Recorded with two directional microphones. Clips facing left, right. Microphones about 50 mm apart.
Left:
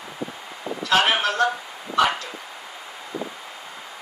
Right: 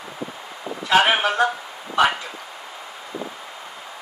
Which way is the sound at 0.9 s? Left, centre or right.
Centre.